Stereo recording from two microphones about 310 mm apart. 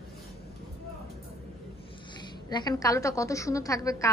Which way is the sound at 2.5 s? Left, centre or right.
Centre.